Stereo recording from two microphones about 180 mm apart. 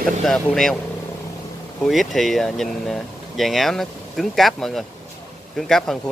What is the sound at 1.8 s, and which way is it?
Speech, centre (ahead or behind).